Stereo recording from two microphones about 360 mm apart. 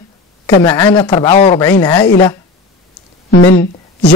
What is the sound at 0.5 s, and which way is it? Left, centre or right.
Speech, centre.